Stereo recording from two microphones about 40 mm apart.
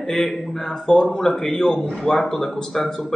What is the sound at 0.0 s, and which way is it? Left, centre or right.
A man's voice, centre.